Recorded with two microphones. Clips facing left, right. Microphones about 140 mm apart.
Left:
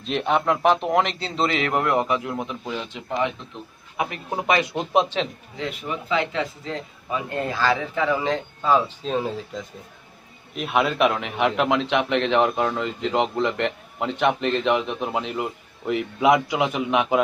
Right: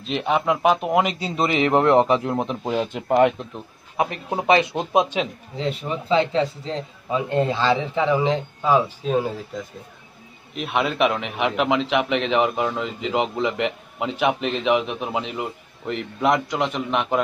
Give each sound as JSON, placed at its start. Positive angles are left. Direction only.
{"t": 0.0, "sound": "a man's voice", "side_deg": 0}
{"t": 3.9, "sound": "a man's voice", "side_deg": -35}
{"t": 4.6, "sound": "speech", "side_deg": -20}
{"t": 5.6, "sound": "a man's voice", "side_deg": -30}